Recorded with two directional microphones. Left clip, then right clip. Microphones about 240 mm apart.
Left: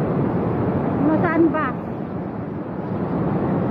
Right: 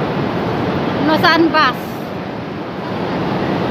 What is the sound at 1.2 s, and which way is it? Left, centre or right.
Vehicle, centre.